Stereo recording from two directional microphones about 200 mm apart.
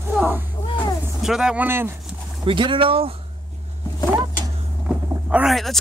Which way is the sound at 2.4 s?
25° right (ahead or behind).